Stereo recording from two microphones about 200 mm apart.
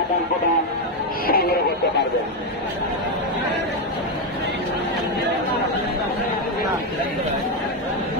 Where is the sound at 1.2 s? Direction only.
50° left (ahead or behind).